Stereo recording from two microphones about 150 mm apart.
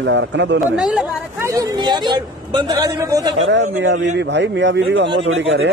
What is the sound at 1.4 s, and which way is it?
A man's voice, 25° right (ahead or behind).